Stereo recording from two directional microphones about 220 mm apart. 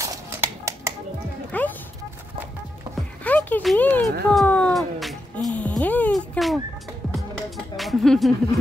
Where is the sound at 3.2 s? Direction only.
5° left (ahead or behind).